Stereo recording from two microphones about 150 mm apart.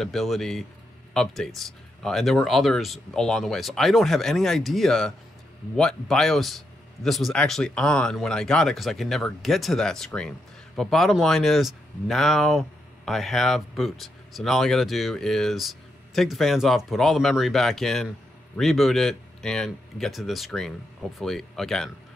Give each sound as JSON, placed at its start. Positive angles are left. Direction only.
{"t": 0.0, "sound": "speech", "side_deg": 0}